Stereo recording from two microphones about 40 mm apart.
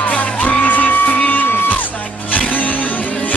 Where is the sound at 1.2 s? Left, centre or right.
Left.